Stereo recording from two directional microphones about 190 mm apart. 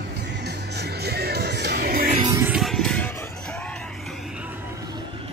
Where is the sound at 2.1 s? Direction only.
25° right (ahead or behind).